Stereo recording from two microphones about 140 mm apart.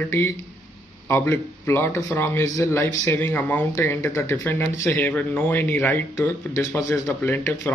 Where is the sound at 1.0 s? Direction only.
15° left (ahead or behind).